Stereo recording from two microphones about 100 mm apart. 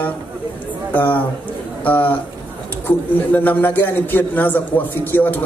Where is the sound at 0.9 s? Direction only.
15° left (ahead or behind).